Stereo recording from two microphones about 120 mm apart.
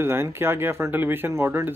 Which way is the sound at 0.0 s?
20° right (ahead or behind).